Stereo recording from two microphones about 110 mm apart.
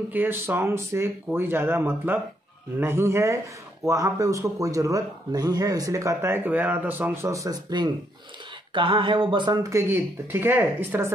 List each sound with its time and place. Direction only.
0.1 s speech: 15° right (ahead or behind)
7.2 s speech: 30° right (ahead or behind)
8.7 s speech: 50° right (ahead or behind)
9.6 s speech: 25° right (ahead or behind)